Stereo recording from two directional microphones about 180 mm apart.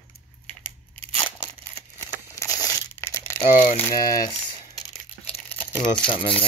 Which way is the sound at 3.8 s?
20° left (ahead or behind).